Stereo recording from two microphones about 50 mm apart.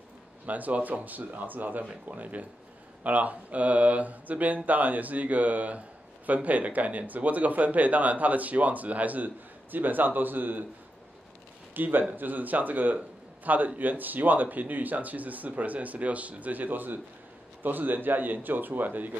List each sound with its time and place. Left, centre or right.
0.5 s speech: right
11.7 s speech: right